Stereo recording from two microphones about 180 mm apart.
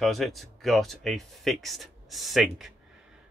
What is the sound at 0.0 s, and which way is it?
Speech, centre (ahead or behind).